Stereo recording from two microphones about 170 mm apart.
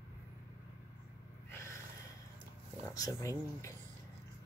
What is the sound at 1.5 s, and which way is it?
Snort, 15° left (ahead or behind).